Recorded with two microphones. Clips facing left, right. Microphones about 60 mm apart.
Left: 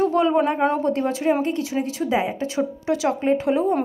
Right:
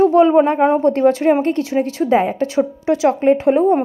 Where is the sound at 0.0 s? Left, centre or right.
Right.